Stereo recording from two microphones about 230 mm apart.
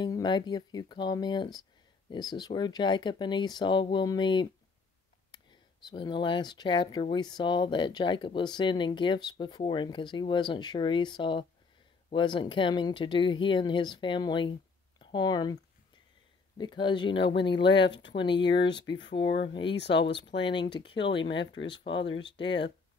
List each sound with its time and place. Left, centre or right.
0.0 s speech: centre
17.6 s speech: left
19.4 s speech: left
19.7 s speech: left
20.4 s speech: left
20.9 s speech: left